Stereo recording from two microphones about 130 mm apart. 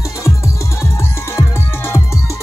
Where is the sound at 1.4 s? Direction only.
20° left (ahead or behind).